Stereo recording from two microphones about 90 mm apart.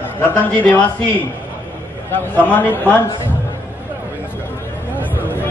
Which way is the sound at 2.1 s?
20° left (ahead or behind).